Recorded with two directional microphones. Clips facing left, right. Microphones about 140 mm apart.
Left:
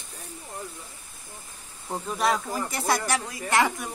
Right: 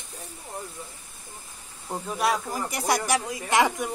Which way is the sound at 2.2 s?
10° right (ahead or behind).